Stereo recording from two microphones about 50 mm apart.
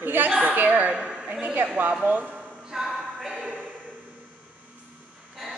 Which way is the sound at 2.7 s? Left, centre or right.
Centre.